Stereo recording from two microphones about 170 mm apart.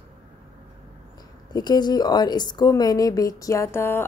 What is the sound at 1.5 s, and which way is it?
A woman's voice, 25° left (ahead or behind).